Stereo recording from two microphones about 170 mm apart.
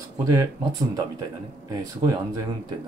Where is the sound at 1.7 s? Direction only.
20° right (ahead or behind).